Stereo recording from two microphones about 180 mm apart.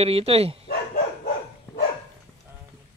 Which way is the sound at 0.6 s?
55° left (ahead or behind).